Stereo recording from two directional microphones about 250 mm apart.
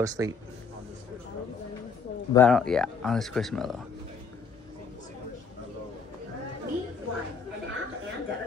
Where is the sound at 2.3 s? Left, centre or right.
Centre.